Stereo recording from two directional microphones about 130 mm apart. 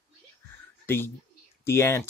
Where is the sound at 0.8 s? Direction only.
15° left (ahead or behind).